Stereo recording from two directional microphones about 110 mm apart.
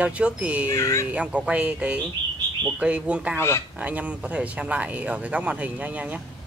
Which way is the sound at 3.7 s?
15° right (ahead or behind).